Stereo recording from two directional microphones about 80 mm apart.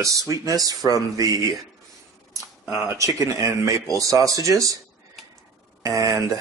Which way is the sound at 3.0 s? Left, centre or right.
Right.